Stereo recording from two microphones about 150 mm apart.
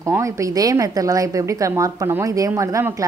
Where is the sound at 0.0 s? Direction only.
20° right (ahead or behind).